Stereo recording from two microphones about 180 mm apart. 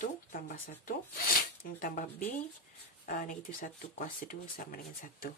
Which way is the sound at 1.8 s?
50° left (ahead or behind).